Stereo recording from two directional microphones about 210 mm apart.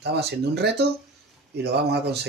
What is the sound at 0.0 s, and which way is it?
Speech, 50° right (ahead or behind).